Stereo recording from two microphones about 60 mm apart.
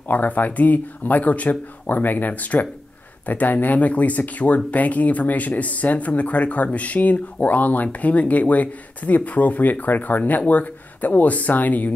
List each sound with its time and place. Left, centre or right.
0.1 s speech: left